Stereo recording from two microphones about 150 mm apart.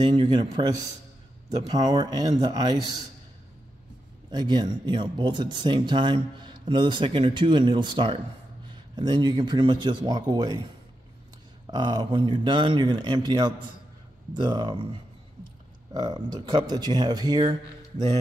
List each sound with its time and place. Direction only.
0.0 s speech: 30° right (ahead or behind)
4.3 s speech: 30° right (ahead or behind)
11.7 s speech: 30° right (ahead or behind)
15.9 s speech: 25° right (ahead or behind)